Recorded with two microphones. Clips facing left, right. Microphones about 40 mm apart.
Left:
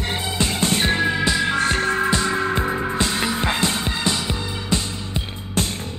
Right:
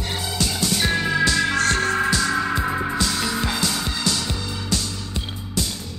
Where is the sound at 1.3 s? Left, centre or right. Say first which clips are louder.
Even; centre.